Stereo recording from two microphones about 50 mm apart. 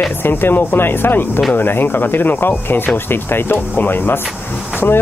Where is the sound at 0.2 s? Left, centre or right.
Left.